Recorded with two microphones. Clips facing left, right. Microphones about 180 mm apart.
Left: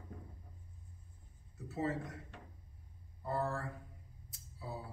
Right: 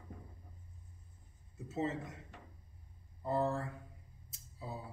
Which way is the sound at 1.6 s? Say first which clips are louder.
Even; 20° right (ahead or behind).